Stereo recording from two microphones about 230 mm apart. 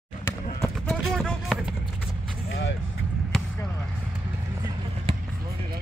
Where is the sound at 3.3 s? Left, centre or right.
Centre.